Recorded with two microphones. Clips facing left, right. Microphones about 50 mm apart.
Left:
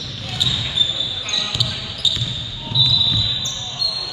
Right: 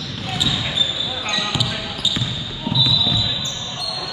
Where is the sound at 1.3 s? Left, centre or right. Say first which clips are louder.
Right 4 dB; centre.